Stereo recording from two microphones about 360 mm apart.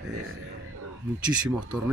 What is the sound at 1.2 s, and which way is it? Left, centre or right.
Speech, centre.